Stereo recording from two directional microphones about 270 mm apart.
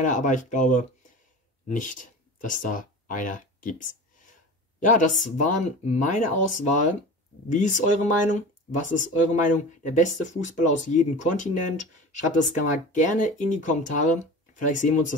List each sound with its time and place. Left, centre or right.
0.0 s speech: left